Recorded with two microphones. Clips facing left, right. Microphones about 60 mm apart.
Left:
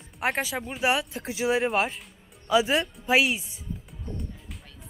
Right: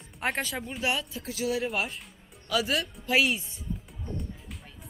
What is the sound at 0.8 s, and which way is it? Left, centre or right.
Speech, left.